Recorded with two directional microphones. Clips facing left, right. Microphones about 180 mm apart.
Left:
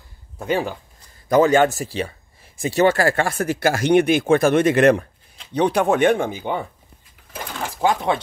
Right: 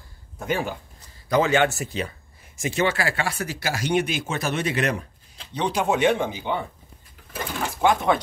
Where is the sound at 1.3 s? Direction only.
45° left (ahead or behind).